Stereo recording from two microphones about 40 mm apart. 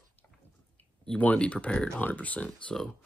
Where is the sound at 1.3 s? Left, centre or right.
Left.